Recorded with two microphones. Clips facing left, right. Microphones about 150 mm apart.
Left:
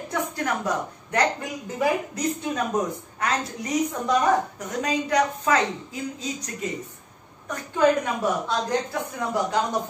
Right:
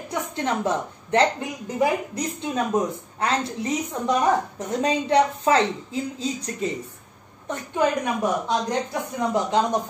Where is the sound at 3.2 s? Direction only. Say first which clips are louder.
Right 3 dB; 30° right (ahead or behind).